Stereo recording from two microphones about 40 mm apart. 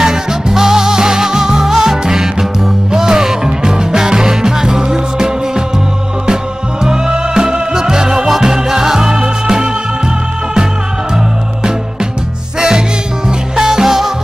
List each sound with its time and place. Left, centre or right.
0.0 s music: centre
6.8 s music: centre
12.5 s music: centre